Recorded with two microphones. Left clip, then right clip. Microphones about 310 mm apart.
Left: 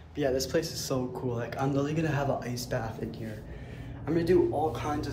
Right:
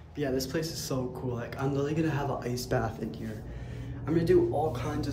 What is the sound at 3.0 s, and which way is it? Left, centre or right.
A man's voice, centre.